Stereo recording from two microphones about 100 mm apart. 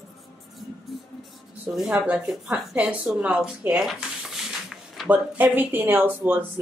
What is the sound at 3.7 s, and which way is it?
Stir, 5° right (ahead or behind).